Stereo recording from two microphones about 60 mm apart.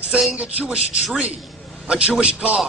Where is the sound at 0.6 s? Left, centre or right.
Centre.